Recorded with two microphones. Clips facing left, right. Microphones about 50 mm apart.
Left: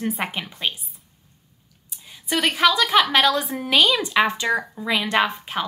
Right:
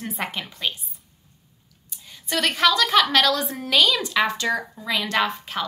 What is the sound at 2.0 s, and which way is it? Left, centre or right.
A woman's voice, centre.